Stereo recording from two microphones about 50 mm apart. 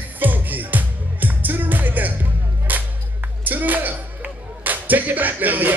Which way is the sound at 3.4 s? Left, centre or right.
Right.